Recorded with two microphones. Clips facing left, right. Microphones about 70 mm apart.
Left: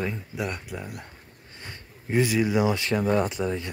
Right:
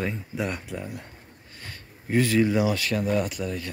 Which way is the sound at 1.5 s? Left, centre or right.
Left.